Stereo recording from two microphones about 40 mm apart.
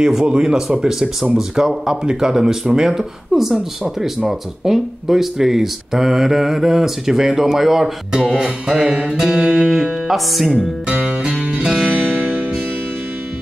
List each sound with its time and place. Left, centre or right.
0.0 s speech: centre
8.7 s music: right
9.1 s speech: centre
9.4 s music: right
10.0 s speech: centre
10.9 s music: right
11.9 s music: right